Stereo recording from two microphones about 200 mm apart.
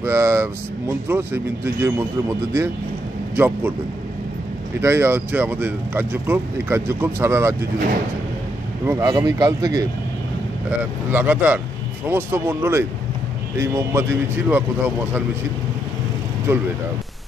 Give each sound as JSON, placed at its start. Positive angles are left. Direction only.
{"t": 0.0, "sound": "speech", "side_deg": -10}
{"t": 4.8, "sound": "speech", "side_deg": -10}
{"t": 8.8, "sound": "speech", "side_deg": -15}
{"t": 11.1, "sound": "speech", "side_deg": -10}
{"t": 16.5, "sound": "speech", "side_deg": -15}